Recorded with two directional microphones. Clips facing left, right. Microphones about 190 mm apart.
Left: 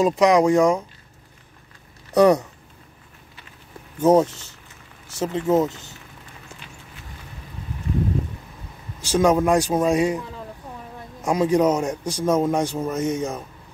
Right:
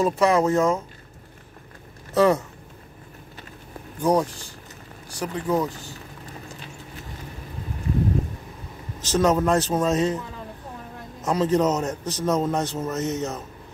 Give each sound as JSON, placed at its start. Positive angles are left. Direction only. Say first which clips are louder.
{"t": 0.0, "sound": "a man's voice", "louder": "left 3 dB", "side_deg": 15}
{"t": 2.1, "sound": "a man's voice", "louder": "left 3 dB", "side_deg": 15}
{"t": 4.0, "sound": "speech", "louder": "left 5 dB", "side_deg": 25}
{"t": 9.0, "sound": "a man's voice", "louder": "left 2 dB", "side_deg": 10}
{"t": 11.2, "sound": "a man's voice", "louder": "left 2 dB", "side_deg": 10}